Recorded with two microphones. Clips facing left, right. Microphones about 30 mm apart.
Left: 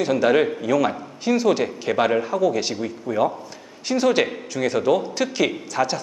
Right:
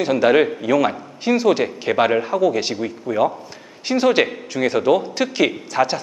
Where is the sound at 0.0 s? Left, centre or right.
Centre.